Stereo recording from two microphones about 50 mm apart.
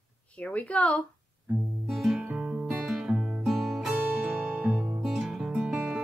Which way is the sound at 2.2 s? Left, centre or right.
Centre.